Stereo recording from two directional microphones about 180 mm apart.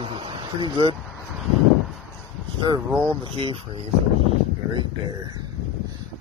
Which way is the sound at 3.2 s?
30° right (ahead or behind).